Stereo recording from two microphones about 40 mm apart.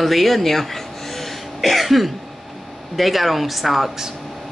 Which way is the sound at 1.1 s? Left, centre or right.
Centre.